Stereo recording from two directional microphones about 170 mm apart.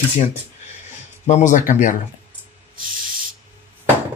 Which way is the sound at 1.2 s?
45° left (ahead or behind).